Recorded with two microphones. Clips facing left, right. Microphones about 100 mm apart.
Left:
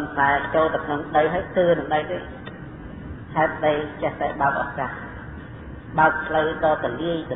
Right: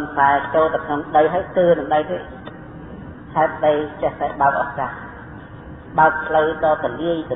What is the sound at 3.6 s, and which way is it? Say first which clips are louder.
A man's voice: right 4 dB; 40° right (ahead or behind).